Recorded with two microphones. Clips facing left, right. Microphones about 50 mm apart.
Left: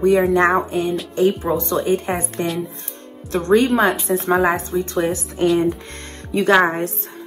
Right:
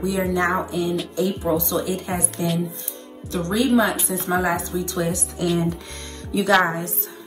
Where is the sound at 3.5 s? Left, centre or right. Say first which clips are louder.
Left 4 dB; left.